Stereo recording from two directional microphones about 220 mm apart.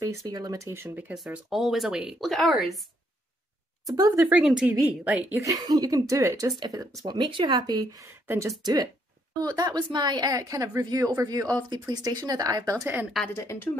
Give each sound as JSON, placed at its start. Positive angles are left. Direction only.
{"t": 0.3, "sound": "speech", "side_deg": -15}
{"t": 3.8, "sound": "a woman's voice", "side_deg": -15}
{"t": 13.2, "sound": "a woman's voice", "side_deg": 10}